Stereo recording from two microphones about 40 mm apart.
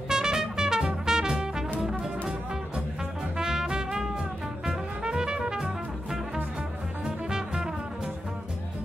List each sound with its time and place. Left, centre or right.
0.1 s music: centre
7.1 s music: centre